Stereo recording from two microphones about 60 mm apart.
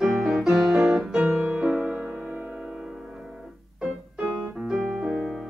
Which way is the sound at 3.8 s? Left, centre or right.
Centre.